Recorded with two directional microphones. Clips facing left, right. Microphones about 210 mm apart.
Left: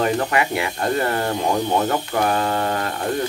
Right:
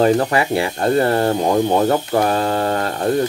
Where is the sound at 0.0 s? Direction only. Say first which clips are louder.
Right 5 dB; 30° right (ahead or behind).